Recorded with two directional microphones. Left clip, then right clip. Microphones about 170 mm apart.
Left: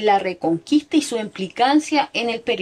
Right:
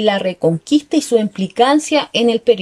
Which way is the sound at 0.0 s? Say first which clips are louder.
Right 3 dB; 55° right (ahead or behind).